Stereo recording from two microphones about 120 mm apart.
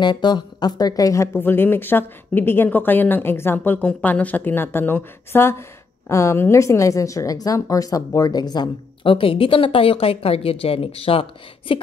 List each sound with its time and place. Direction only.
0.0 s a woman's voice: 40° left (ahead or behind)